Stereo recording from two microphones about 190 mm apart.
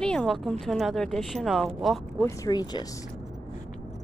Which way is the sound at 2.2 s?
20° left (ahead or behind).